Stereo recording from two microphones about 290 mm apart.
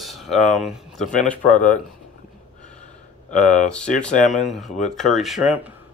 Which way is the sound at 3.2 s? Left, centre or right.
Left.